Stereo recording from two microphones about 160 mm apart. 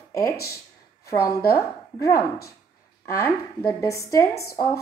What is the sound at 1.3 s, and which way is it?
A woman's voice, 20° left (ahead or behind).